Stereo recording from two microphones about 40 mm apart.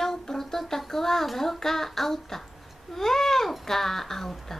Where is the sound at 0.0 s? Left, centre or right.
Centre.